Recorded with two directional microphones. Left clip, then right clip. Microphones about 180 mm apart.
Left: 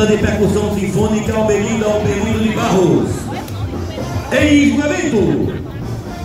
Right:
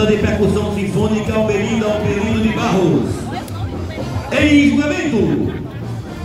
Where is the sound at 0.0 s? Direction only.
45° left (ahead or behind).